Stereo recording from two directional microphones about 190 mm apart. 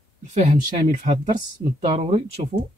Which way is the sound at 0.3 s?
40° right (ahead or behind).